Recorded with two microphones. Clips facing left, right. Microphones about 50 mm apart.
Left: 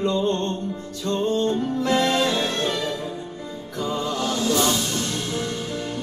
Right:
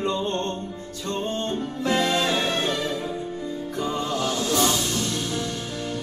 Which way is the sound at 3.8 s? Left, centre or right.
Right.